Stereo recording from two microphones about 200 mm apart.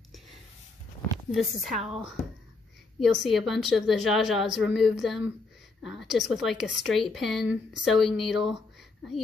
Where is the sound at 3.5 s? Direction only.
Centre (ahead or behind).